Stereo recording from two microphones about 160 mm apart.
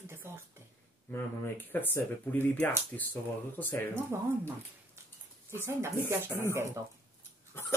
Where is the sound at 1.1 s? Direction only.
15° left (ahead or behind).